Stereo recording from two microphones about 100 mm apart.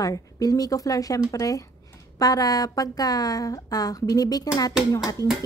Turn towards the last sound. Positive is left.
turn(degrees=40)  # may be behind; listen again after turning